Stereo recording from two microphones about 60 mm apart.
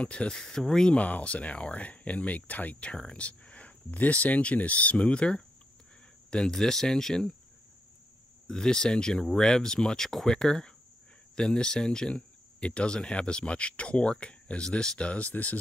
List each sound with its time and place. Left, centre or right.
0.0 s speech: centre
0.9 s speech: left; by 7.3 s centre
8.5 s speech: centre; by 15.6 s left